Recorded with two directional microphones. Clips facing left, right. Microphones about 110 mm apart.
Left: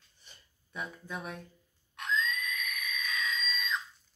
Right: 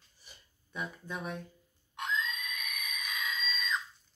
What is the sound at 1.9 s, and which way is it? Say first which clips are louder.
Frog: left 2 dB; 15° right (ahead or behind).